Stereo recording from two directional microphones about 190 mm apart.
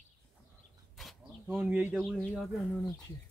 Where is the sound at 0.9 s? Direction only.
Centre (ahead or behind).